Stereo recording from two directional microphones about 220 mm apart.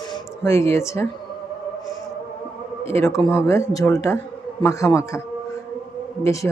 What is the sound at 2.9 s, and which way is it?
Speech, 10° left (ahead or behind).